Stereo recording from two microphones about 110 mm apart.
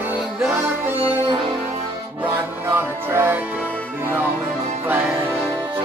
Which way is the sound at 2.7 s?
20° right (ahead or behind).